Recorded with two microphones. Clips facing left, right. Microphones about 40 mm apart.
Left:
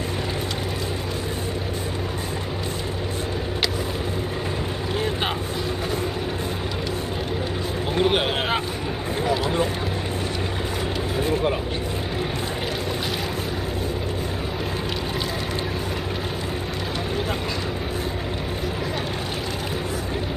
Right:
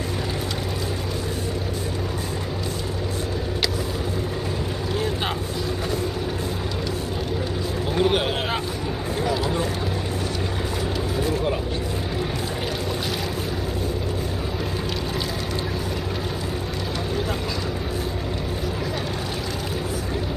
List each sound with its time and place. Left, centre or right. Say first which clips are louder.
7.9 s a sound: even; centre
9.2 s vehicle: left 2 dB; centre
11.1 s vehicle: left 2 dB; centre